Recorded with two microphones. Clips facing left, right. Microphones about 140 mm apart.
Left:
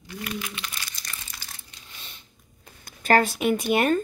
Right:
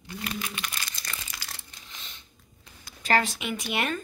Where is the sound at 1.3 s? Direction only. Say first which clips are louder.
Right 2 dB; 90° right.